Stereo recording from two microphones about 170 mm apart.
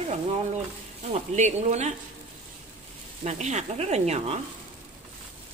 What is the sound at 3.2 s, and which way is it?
Speech, 40° right (ahead or behind).